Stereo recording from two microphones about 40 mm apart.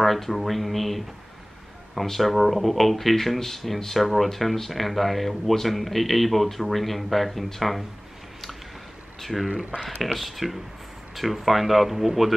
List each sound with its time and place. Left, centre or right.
0.0 s speech: centre
9.2 s speech: centre
9.5 s speech: right
9.8 s speech: centre